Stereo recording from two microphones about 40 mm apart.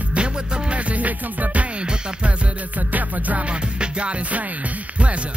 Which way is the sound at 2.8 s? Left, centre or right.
Right.